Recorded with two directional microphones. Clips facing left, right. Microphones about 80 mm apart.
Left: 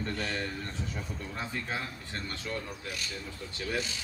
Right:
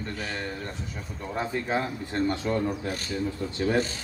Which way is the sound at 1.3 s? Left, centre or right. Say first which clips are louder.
Right 10 dB; right.